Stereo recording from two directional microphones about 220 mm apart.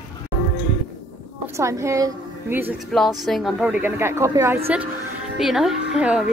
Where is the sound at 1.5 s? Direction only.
15° right (ahead or behind).